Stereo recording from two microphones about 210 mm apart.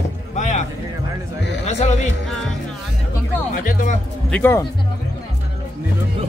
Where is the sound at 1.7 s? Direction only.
30° left (ahead or behind).